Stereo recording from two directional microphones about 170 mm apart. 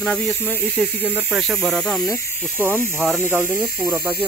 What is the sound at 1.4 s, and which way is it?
Cricket, centre (ahead or behind).